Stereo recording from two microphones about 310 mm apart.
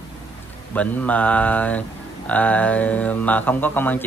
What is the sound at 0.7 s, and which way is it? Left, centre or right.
Speech, centre.